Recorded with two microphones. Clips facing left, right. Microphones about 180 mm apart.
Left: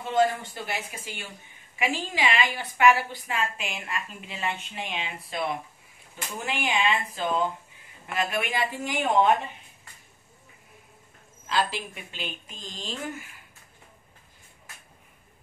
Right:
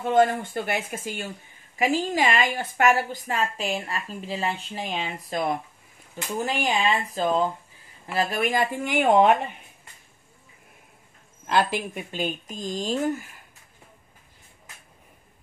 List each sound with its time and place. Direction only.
0.0 s a woman's voice: 55° right (ahead or behind)
8.7 s a woman's voice: 60° right (ahead or behind)
11.4 s speech: 55° right (ahead or behind)